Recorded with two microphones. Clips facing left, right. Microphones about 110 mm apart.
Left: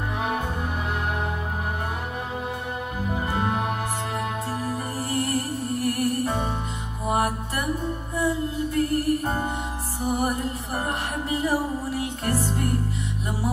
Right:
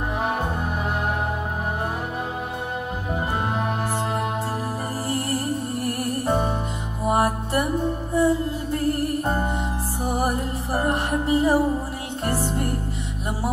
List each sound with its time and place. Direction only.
3.3 s music: 30° right (ahead or behind)
5.1 s music: 30° right (ahead or behind)